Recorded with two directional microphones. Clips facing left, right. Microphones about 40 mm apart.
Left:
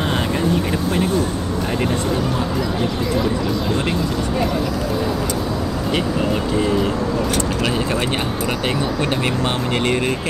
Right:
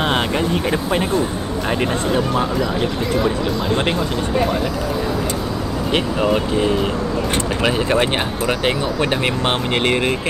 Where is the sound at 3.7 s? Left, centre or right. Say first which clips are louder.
Right 1 dB; right.